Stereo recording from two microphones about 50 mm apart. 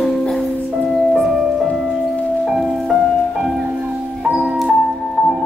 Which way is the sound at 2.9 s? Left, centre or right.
Centre.